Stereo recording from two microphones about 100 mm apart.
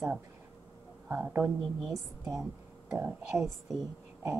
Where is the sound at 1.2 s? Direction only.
10° right (ahead or behind).